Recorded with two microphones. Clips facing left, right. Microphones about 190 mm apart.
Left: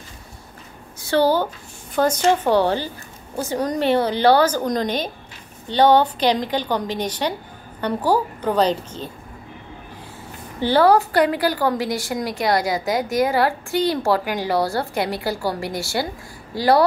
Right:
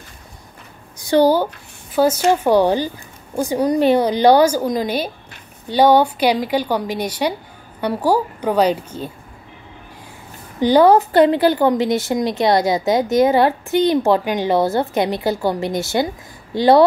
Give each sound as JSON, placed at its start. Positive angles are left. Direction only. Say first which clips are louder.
{"t": 0.9, "sound": "a woman's voice", "louder": "right 4 dB", "side_deg": -15}
{"t": 10.6, "sound": "a woman's voice", "louder": "right 4 dB", "side_deg": -15}